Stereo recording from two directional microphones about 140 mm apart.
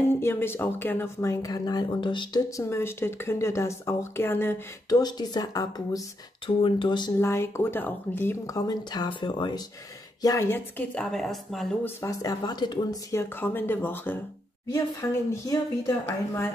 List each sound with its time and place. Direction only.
0.1 s speech: 15° left (ahead or behind); by 2.4 s 35° left (ahead or behind)
2.5 s speech: 20° left (ahead or behind)
4.8 s speech: 30° left (ahead or behind)
7.2 s speech: 20° left (ahead or behind)
8.5 s speech: 30° left (ahead or behind)
10.2 s speech: 20° left (ahead or behind); by 11.6 s 5° left (ahead or behind)
11.8 s speech: 25° left (ahead or behind)
13.2 s speech: 15° left (ahead or behind)
14.7 s speech: 25° left (ahead or behind)